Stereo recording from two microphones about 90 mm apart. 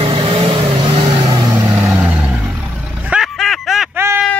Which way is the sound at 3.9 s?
25° right (ahead or behind).